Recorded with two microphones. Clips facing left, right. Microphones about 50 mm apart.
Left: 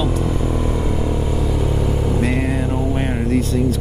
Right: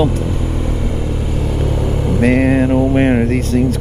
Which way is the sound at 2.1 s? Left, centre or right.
Right.